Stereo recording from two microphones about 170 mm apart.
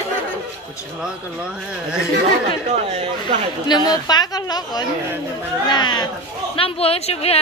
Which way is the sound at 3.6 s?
25° left (ahead or behind).